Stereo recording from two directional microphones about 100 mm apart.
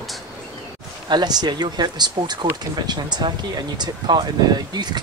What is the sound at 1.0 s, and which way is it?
Speech, 45° right (ahead or behind).